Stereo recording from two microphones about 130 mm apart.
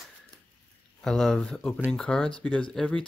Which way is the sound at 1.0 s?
5° left (ahead or behind).